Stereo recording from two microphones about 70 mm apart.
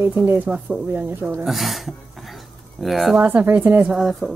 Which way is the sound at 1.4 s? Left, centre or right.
Centre.